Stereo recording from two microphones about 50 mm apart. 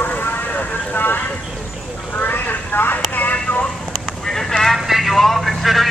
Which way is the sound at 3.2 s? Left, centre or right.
Left.